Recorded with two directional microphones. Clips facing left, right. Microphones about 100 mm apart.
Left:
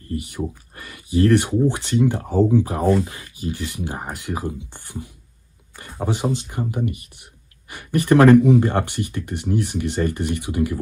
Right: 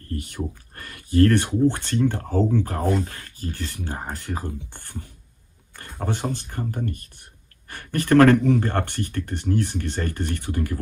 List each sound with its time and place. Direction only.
0.3 s speech: 10° left (ahead or behind)